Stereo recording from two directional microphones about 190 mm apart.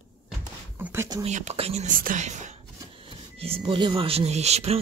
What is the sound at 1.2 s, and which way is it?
Speech, 35° right (ahead or behind).